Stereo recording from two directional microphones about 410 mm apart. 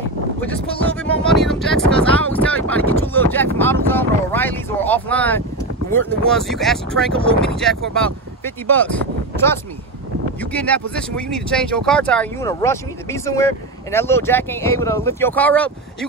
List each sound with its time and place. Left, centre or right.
0.7 s speech: centre
1.3 s speech: centre
1.9 s a sound: centre
5.9 s speech: centre
10.5 s speech: centre